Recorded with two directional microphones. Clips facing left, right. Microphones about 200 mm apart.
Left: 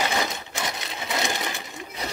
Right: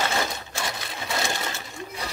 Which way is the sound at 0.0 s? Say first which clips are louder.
Left 1 dB; 20° left (ahead or behind).